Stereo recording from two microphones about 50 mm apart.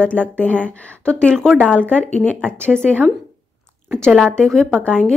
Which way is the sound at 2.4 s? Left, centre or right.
Centre.